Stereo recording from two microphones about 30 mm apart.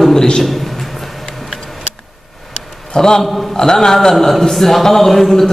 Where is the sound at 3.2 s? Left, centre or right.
Centre.